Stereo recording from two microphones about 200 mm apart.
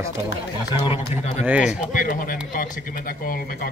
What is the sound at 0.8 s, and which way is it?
Speech, 30° left (ahead or behind).